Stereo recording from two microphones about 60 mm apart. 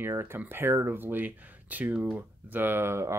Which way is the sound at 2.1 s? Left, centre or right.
Right.